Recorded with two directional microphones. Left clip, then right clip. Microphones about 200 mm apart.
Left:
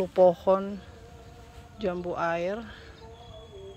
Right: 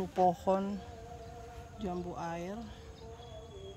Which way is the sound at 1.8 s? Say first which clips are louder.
Left 10 dB; 10° left (ahead or behind).